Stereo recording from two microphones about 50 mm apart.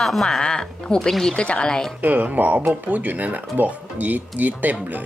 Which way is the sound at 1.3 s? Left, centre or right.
Left.